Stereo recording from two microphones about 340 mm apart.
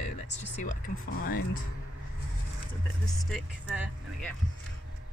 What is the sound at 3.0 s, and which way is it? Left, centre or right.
Speech, centre.